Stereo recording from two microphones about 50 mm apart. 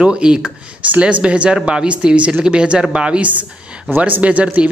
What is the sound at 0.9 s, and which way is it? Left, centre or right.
Speech, right.